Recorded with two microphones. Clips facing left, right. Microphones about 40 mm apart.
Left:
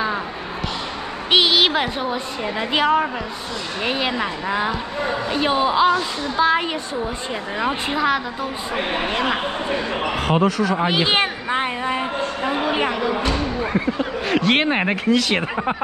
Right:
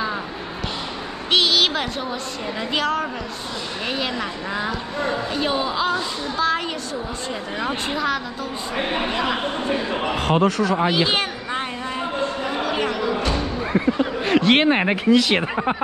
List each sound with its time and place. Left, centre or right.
1.3 s a woman's voice: centre
10.3 s speech: centre
10.9 s a sound: centre
13.7 s speech: centre